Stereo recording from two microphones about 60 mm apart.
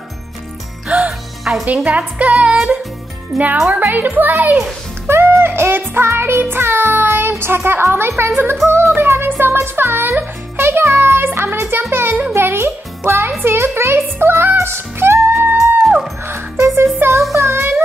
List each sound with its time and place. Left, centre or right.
0.8 s music: centre
1.4 s music: centre
1.9 s music: right
2.3 s music: centre
3.3 s speech: centre
3.9 s a child's voice: right
8.6 s music: right
13.4 s speech: right
16.3 s music: right
17.4 s child singing: right